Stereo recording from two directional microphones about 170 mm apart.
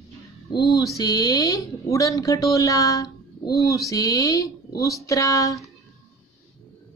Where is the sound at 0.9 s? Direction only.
20° left (ahead or behind).